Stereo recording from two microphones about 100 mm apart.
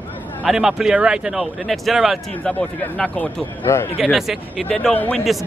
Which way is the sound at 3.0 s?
5° left (ahead or behind).